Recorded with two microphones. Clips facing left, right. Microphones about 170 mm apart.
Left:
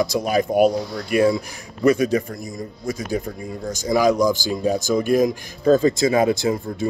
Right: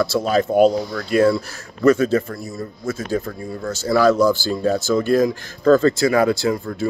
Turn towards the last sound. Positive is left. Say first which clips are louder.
# right 1 dB
turn(degrees=20)  # may be behind; listen again after turning